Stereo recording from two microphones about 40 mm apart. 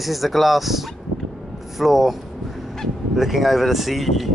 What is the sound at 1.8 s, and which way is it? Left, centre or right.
A woman's voice, centre.